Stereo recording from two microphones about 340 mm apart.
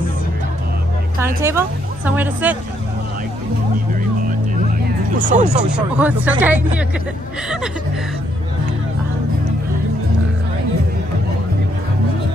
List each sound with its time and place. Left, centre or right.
1.2 s a woman's voice: centre
5.3 s speech: centre
5.9 s speech: centre